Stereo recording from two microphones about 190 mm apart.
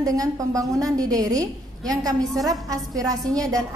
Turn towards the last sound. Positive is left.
turn(degrees=-20)  # may be behind; listen again after turning